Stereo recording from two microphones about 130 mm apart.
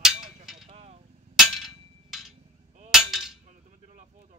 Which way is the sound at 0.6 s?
55° right (ahead or behind).